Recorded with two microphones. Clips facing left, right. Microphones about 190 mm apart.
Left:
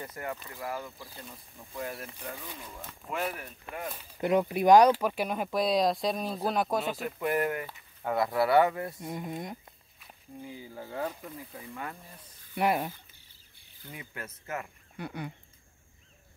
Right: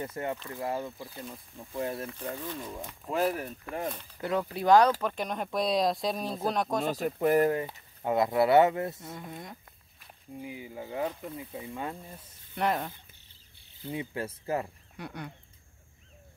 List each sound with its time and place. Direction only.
0.0 s speech: 25° right (ahead or behind)
3.1 s speech: 35° right (ahead or behind)
4.2 s speech: 20° left (ahead or behind)
6.9 s speech: 40° right (ahead or behind); by 9.0 s 25° right (ahead or behind)
9.0 s speech: 20° left (ahead or behind)
10.4 s speech: 15° right (ahead or behind)
12.5 s speech: 10° left (ahead or behind)
13.8 s speech: 25° right (ahead or behind)
15.0 s speech: 5° left (ahead or behind)